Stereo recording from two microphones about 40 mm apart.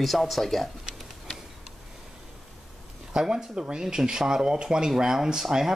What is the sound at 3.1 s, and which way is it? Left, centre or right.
Speech, centre.